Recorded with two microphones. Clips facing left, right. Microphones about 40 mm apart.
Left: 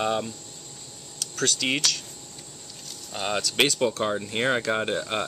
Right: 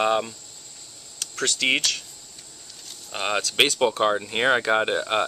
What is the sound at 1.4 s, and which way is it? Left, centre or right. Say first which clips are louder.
Speech: right 3 dB; right.